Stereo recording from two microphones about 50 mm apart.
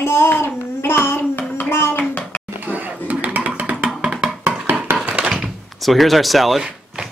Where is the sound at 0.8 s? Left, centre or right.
Left.